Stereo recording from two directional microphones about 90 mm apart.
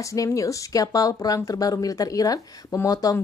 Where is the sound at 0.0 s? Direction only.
35° left (ahead or behind).